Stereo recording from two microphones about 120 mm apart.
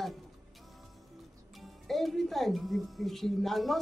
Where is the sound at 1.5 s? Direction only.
Centre (ahead or behind).